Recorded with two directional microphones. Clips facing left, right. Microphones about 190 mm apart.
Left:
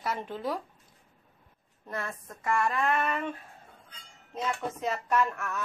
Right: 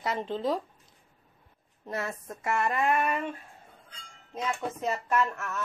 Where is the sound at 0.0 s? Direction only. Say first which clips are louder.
Right 3 dB; 20° right (ahead or behind).